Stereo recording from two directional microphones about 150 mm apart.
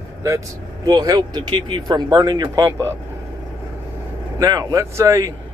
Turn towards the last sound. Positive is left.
turn(degrees=-20)  # may be behind; listen again after turning